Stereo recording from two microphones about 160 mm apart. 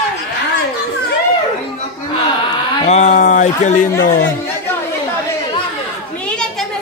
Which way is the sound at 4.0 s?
65° left (ahead or behind).